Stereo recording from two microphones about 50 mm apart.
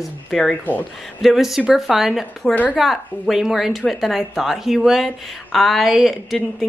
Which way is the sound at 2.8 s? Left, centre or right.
Centre.